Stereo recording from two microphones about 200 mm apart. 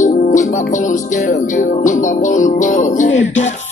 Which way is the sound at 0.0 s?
40° left (ahead or behind).